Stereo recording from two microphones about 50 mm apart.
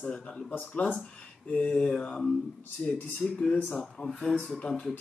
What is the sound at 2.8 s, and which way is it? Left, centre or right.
Speech, left.